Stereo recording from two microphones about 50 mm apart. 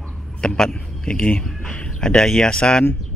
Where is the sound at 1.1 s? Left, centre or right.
Left.